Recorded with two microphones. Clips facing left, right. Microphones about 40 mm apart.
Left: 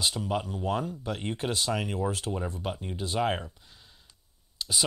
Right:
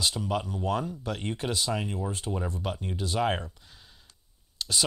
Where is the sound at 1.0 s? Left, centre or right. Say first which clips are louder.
Even; centre.